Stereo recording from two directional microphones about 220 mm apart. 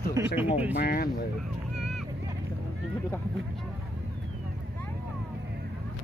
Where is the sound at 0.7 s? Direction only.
45° left (ahead or behind).